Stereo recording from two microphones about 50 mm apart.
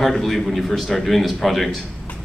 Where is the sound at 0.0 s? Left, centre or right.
Centre.